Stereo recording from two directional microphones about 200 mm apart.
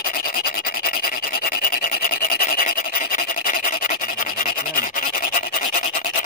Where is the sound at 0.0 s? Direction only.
45° left (ahead or behind).